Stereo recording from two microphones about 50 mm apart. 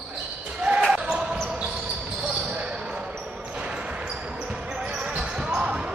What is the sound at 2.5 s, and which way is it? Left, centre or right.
Basketball bounce, centre.